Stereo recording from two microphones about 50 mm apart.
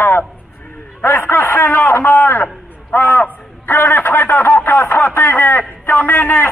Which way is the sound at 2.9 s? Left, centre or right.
Left.